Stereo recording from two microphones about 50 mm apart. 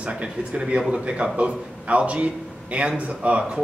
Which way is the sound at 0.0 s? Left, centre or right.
Right.